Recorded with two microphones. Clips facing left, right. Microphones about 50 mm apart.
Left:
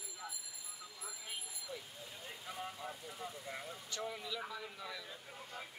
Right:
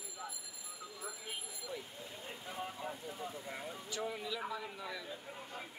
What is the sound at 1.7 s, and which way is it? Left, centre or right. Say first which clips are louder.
Vehicle: right 3 dB; centre.